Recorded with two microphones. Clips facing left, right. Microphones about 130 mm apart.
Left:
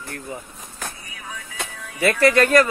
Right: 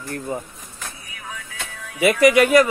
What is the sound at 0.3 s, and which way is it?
Speech, 40° right (ahead or behind).